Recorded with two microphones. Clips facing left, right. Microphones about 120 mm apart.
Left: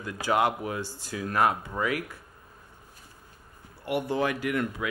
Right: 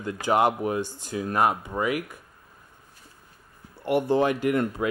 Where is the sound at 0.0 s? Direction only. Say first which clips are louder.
Right 3 dB; 25° right (ahead or behind).